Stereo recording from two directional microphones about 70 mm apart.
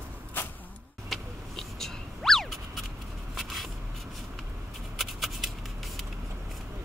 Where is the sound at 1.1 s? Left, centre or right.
Centre.